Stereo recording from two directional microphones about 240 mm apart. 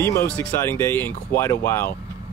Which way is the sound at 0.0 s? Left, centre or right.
Centre.